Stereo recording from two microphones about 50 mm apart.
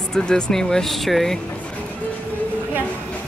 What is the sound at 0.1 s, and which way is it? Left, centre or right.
Speech, centre.